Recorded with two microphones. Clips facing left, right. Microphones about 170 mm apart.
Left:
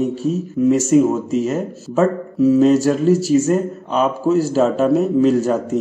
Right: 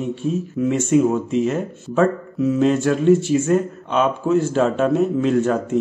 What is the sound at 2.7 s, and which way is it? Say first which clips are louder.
Speech: left 4 dB; 40° left (ahead or behind).